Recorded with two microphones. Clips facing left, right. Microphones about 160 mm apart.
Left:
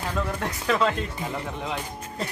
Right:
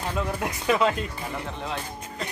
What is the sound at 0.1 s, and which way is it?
Speech, 10° right (ahead or behind).